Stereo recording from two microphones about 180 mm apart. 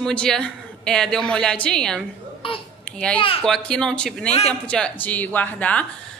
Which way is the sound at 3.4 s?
5° left (ahead or behind).